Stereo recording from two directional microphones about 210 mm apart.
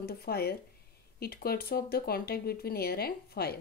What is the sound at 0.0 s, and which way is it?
A woman's voice, 50° left (ahead or behind).